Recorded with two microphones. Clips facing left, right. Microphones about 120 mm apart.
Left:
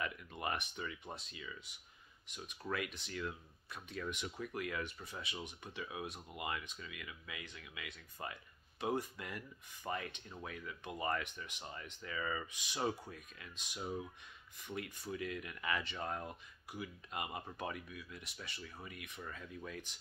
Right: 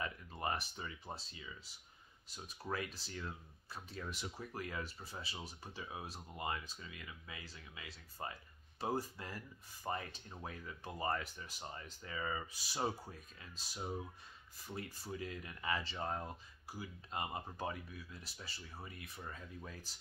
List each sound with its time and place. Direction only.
0.0 s speech: 30° right (ahead or behind)